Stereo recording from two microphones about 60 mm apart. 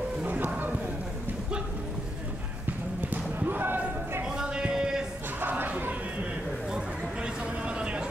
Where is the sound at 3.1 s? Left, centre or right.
Right.